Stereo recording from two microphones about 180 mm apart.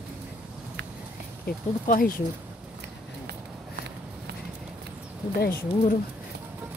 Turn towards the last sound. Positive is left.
turn(degrees=60)  # may be behind; listen again after turning